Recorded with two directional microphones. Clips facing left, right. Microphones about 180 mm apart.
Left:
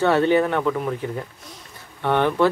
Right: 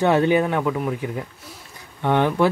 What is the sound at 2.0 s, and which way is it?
Speech, 15° right (ahead or behind).